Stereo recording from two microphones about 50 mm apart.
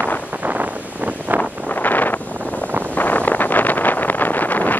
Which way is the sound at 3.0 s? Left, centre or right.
Left.